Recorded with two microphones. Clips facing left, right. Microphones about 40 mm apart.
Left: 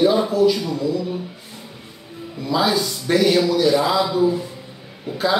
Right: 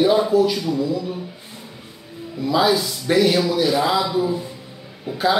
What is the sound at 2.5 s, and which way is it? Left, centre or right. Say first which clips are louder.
A man's voice: right 1 dB; centre.